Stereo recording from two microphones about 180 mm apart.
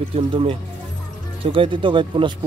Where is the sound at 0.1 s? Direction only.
30° right (ahead or behind).